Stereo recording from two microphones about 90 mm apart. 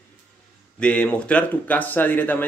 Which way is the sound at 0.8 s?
15° left (ahead or behind).